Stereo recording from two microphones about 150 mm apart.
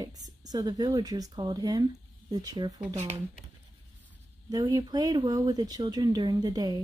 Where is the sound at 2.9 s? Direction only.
50° right (ahead or behind).